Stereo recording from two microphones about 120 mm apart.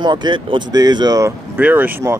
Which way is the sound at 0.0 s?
40° right (ahead or behind).